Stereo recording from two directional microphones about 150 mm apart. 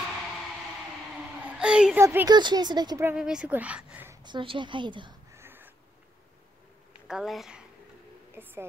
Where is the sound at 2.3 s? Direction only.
30° right (ahead or behind).